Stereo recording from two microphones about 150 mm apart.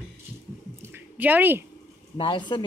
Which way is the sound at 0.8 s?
15° right (ahead or behind).